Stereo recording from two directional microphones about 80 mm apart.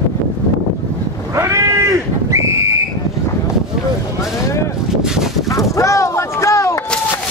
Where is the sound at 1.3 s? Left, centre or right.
Right.